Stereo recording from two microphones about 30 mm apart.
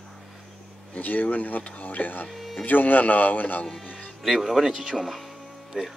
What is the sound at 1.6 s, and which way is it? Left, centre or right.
Speech, left.